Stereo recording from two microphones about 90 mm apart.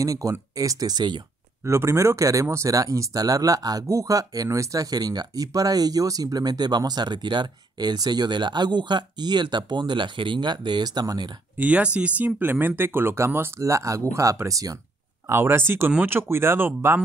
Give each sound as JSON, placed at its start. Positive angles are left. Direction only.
{"t": 0.0, "sound": "speech", "side_deg": -40}
{"t": 1.7, "sound": "speech", "side_deg": -30}
{"t": 11.5, "sound": "speech", "side_deg": -15}
{"t": 15.2, "sound": "speech", "side_deg": -25}